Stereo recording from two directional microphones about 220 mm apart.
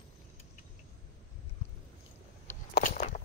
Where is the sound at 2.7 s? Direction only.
40° left (ahead or behind).